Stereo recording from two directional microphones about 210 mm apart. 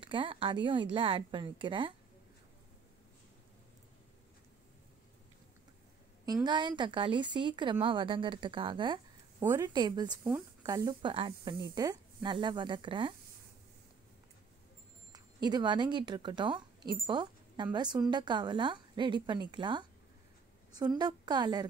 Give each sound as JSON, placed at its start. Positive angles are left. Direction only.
{"t": 0.0, "sound": "a woman's voice", "side_deg": -25}
{"t": 6.2, "sound": "a woman's voice", "side_deg": -20}
{"t": 15.1, "sound": "a woman's voice", "side_deg": -20}